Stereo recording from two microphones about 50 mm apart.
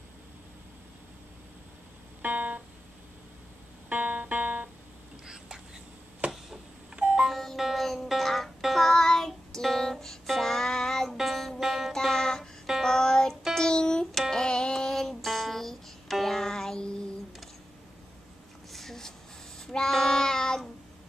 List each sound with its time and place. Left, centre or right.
2.2 s music: right
3.9 s music: right
5.2 s a sound: centre
6.2 s chop: right
7.2 s music: centre
8.5 s child singing: centre
9.6 s music: centre
11.9 s music: centre
12.8 s child singing: centre
13.6 s music: centre
18.7 s a sound: centre
19.6 s child singing: centre